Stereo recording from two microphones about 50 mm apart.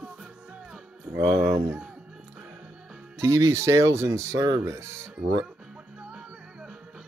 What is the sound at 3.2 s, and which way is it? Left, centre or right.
Speech, right.